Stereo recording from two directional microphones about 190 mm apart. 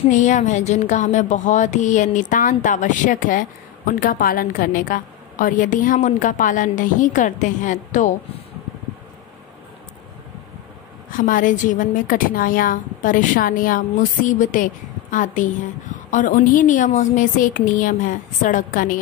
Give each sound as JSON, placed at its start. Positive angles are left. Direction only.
{"t": 0.1, "sound": "speech", "side_deg": 40}
{"t": 11.1, "sound": "a woman's voice", "side_deg": 45}